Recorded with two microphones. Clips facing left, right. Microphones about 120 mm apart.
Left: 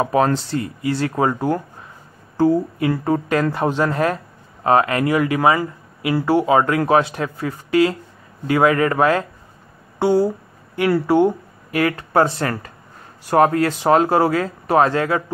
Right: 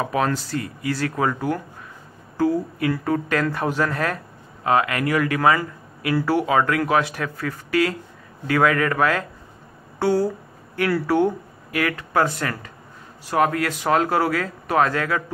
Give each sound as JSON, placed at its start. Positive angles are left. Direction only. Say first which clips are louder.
{"t": 0.0, "sound": "speech", "louder": "left 5 dB", "side_deg": 30}